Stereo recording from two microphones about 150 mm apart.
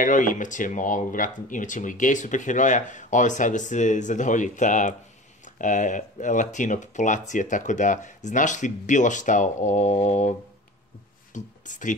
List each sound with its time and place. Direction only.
0.0 s speech: 60° left (ahead or behind)
11.3 s speech: 55° left (ahead or behind)